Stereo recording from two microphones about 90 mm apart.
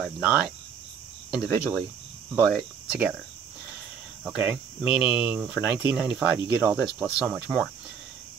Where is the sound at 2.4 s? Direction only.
10° right (ahead or behind).